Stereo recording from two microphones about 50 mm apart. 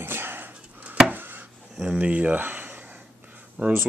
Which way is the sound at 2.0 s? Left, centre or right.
Right.